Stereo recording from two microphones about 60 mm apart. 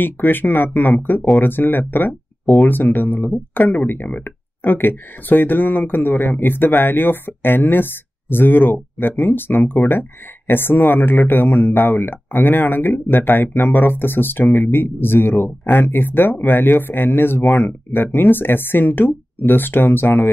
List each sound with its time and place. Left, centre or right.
0.0 s speech: left